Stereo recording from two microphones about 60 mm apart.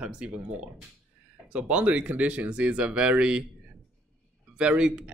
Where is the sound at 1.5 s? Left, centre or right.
Right.